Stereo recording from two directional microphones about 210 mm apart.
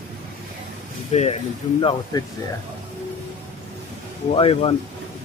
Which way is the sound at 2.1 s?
20° left (ahead or behind).